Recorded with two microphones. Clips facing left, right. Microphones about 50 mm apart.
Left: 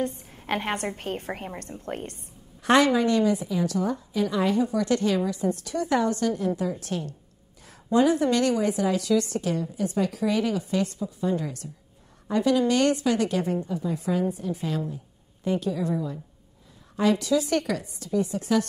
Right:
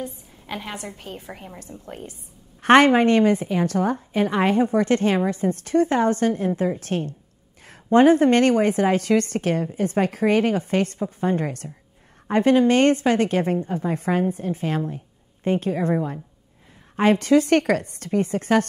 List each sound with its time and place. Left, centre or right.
0.5 s a woman's voice: left
2.6 s a woman's voice: right